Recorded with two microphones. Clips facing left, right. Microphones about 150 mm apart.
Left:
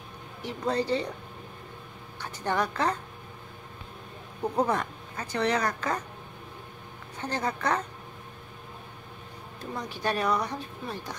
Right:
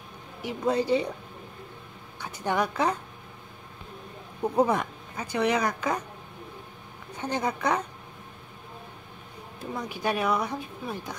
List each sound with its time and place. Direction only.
0.4 s speech: 10° right (ahead or behind)
2.1 s a woman's voice: 10° right (ahead or behind)
4.4 s speech: 10° right (ahead or behind)
7.2 s speech: 15° right (ahead or behind)
9.6 s speech: 10° right (ahead or behind)